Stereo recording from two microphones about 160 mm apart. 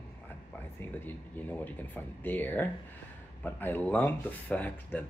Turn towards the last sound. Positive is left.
turn(degrees=10)  # may be behind; listen again after turning